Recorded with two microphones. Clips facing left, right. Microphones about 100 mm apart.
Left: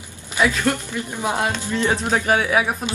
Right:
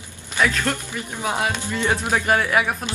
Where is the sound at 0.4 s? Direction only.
10° left (ahead or behind).